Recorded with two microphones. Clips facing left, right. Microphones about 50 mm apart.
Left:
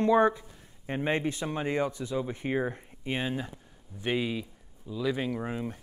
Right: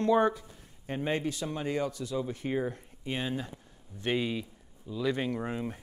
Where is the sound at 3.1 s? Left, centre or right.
Centre.